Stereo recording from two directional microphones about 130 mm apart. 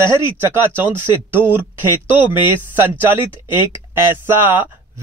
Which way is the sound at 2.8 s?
15° right (ahead or behind).